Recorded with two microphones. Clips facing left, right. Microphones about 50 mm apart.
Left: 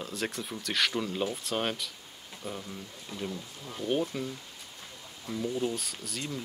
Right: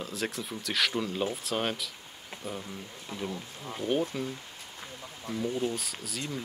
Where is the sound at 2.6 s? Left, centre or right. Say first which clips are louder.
Right 1 dB; centre.